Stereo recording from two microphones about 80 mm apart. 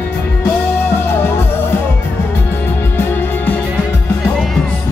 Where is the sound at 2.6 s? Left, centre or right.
Left.